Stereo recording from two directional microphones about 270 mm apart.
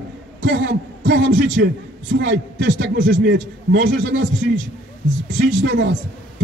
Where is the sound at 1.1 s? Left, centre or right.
Right.